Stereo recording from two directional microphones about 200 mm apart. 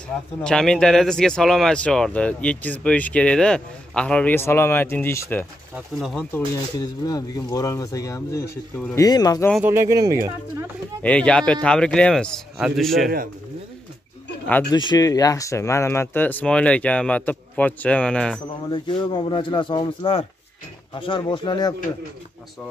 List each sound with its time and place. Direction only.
0.4 s speech: 5° left (ahead or behind)
5.8 s speech: centre (ahead or behind)
6.8 s speech: 20° left (ahead or behind)
9.5 s speech: 10° right (ahead or behind)
11.0 s speech: 5° left (ahead or behind)
14.7 s speech: 20° left (ahead or behind); by 18.4 s 5° left (ahead or behind)
18.7 s speech: 20° left (ahead or behind)